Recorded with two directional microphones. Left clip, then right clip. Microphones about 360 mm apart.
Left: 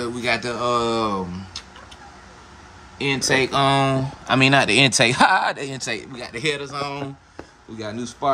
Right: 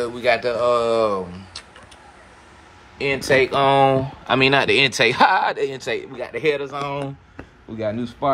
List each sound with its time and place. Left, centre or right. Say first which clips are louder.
0.0 s speech: right 4 dB; centre
3.0 s speech: right 2 dB; centre
7.8 s speech: right 4 dB; centre